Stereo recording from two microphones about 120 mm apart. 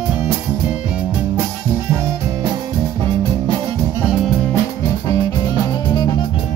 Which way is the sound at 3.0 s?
40° right (ahead or behind).